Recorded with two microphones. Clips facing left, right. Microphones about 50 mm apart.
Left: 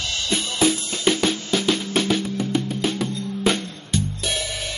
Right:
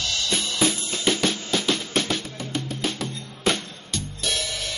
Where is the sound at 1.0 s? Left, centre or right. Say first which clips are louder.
Left 3 dB; centre.